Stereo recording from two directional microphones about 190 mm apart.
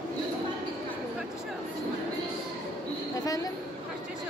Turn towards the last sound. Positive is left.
turn(degrees=20)  # may be behind; listen again after turning